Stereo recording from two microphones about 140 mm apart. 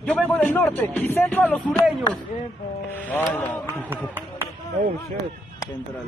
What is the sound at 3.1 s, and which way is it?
Speech, 15° left (ahead or behind).